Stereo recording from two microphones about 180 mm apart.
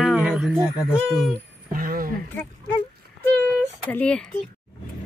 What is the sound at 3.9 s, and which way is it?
Speech, 5° left (ahead or behind).